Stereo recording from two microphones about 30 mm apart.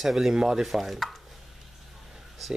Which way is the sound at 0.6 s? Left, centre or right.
Centre.